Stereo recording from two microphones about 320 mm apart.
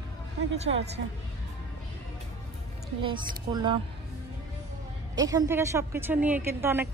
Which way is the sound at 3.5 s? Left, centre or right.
Centre.